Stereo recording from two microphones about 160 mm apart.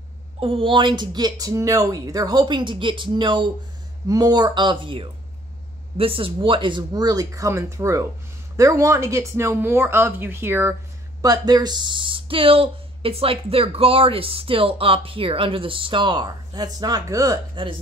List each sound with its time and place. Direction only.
0.4 s speech: 35° right (ahead or behind)